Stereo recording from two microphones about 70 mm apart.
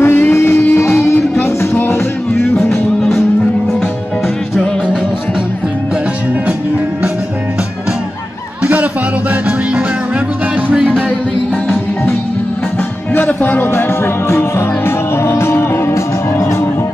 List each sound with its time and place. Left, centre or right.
0.0 s music: left
10.7 s music: centre
13.1 s music: left
15.2 s music: left